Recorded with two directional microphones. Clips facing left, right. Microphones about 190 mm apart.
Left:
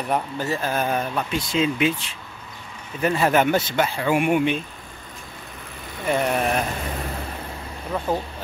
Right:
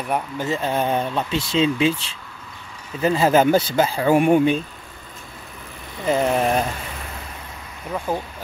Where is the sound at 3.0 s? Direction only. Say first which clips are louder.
Right 3 dB; 25° right (ahead or behind).